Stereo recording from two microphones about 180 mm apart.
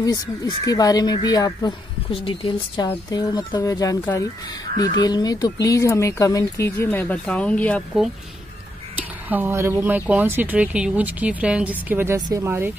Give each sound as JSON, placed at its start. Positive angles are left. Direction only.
{"t": 0.0, "sound": "speech", "side_deg": 20}
{"t": 9.3, "sound": "speech", "side_deg": -15}